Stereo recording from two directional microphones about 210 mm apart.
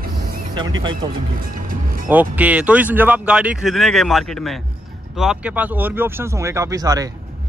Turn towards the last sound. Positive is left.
turn(degrees=-15)  # may be behind; listen again after turning